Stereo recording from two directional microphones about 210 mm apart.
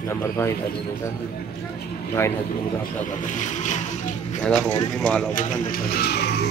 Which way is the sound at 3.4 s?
35° left (ahead or behind).